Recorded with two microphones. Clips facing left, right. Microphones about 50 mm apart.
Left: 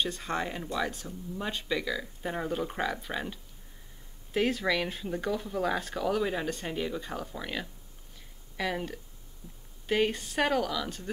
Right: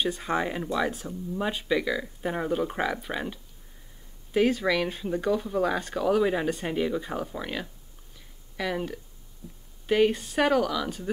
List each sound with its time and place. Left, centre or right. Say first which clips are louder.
0.0 s speech: right 4 dB; centre
4.3 s speech: right 4 dB; centre